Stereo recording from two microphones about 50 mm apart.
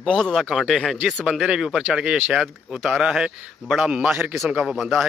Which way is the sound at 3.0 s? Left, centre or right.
Centre.